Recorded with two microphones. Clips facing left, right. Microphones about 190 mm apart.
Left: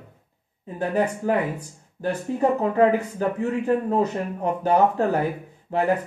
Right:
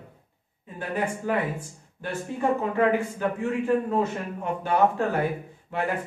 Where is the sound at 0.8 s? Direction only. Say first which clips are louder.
Left 5 dB; 40° left (ahead or behind).